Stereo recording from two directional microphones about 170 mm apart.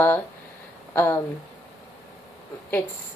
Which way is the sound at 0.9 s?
15° left (ahead or behind).